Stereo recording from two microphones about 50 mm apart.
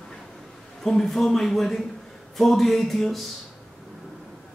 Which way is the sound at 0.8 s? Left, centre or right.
Centre.